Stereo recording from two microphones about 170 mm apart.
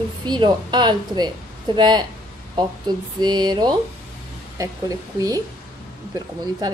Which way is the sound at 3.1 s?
25° right (ahead or behind).